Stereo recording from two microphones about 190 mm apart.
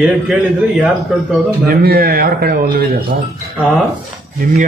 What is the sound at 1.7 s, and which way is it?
A man's voice, 50° right (ahead or behind).